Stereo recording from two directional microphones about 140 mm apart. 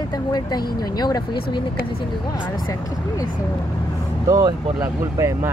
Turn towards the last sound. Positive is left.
turn(degrees=-20)  # may be behind; listen again after turning